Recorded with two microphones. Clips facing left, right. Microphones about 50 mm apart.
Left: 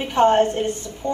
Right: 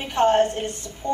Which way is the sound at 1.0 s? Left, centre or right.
Left.